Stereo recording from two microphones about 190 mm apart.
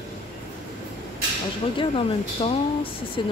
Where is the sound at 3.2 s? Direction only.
25° left (ahead or behind).